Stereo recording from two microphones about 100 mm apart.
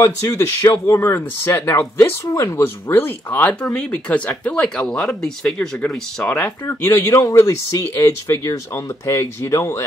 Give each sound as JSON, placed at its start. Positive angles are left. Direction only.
{"t": 0.0, "sound": "speech", "side_deg": 30}
{"t": 6.6, "sound": "speech", "side_deg": 25}